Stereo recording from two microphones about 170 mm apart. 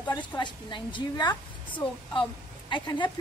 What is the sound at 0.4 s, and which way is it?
A woman's voice, 25° left (ahead or behind).